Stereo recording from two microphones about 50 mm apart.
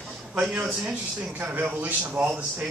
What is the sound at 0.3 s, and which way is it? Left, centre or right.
Speech, right.